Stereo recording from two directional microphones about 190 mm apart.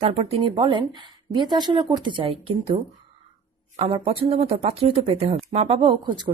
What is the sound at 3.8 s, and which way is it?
A woman's voice, 30° right (ahead or behind).